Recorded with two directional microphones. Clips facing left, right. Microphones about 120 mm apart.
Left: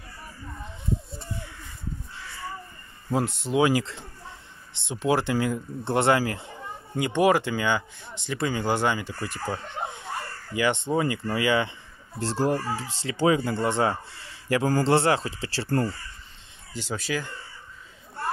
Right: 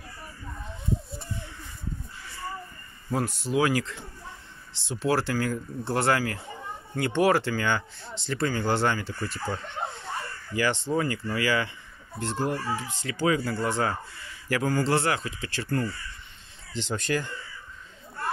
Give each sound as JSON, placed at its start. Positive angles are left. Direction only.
{"t": 3.1, "sound": "speech", "side_deg": 25}
{"t": 16.7, "sound": "speech", "side_deg": 5}